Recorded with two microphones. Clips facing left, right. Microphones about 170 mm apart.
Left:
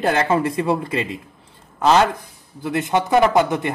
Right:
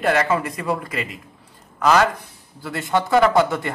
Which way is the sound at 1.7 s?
25° left (ahead or behind).